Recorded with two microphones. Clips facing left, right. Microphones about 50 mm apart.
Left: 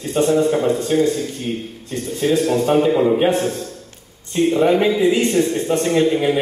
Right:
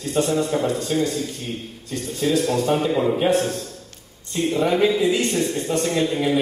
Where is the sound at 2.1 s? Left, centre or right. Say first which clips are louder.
Left 3 dB; left.